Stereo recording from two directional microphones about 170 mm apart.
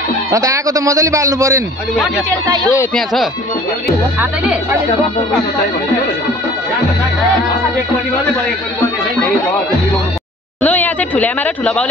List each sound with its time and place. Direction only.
0.3 s a man's voice: 20° right (ahead or behind)
2.9 s speech: centre (ahead or behind)
10.6 s a sound: 10° left (ahead or behind)